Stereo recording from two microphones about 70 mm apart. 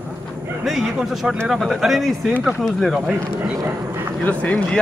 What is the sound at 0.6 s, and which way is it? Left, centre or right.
Speech, centre.